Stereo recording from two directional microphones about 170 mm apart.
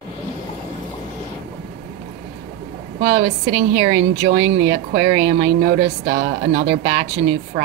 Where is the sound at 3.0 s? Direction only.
90° right.